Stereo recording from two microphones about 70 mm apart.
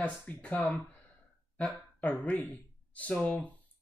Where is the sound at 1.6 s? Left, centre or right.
Centre.